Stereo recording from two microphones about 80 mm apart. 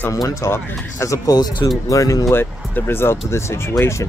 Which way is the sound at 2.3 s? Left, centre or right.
Left.